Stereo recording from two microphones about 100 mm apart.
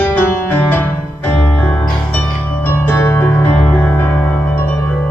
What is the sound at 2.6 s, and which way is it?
Music, 20° left (ahead or behind).